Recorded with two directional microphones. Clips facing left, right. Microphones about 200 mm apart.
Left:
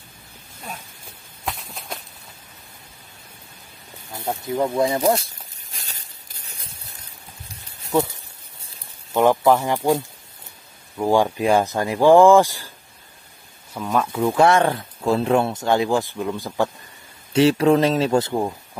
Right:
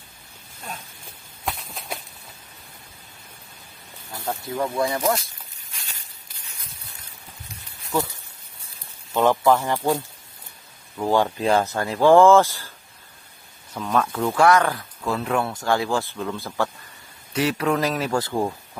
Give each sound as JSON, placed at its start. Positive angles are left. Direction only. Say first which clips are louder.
{"t": 1.4, "sound": "a sound", "louder": "even", "side_deg": 0}
{"t": 4.1, "sound": "snake", "louder": "left 3 dB", "side_deg": 20}
{"t": 7.9, "sound": "speech", "louder": "left 5 dB", "side_deg": 20}
{"t": 9.1, "sound": "speech", "louder": "left 2 dB", "side_deg": 15}
{"t": 13.7, "sound": "speech", "louder": "left 1 dB", "side_deg": 5}
{"t": 14.3, "sound": "speech", "louder": "left 1 dB", "side_deg": 25}
{"t": 17.3, "sound": "speech", "louder": "left 7 dB", "side_deg": 30}